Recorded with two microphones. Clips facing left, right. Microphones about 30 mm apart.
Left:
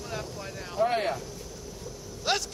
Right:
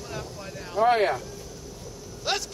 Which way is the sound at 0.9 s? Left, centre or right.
Right.